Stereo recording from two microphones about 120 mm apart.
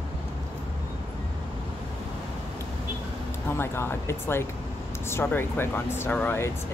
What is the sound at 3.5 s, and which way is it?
Speech, 20° left (ahead or behind).